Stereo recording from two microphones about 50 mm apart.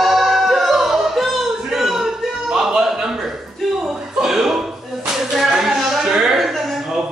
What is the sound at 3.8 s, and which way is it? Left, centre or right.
Slap, centre.